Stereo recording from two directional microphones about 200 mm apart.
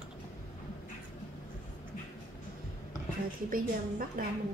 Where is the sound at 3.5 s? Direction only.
45° right (ahead or behind).